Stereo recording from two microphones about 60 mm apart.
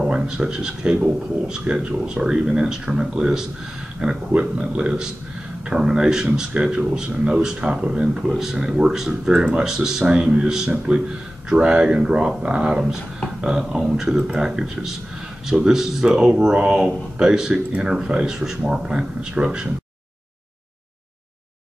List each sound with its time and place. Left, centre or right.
0.0 s speech: centre